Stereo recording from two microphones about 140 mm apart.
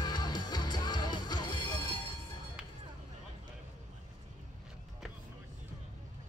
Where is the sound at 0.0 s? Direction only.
30° left (ahead or behind).